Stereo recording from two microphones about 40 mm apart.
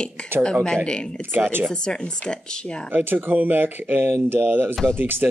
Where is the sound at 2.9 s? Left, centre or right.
Right.